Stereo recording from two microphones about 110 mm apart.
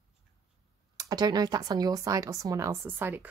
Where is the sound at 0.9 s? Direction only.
35° right (ahead or behind).